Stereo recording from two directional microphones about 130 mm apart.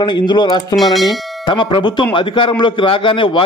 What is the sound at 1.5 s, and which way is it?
A man's voice, 40° left (ahead or behind).